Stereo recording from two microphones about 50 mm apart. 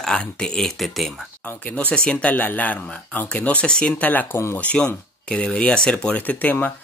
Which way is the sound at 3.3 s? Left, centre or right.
Left.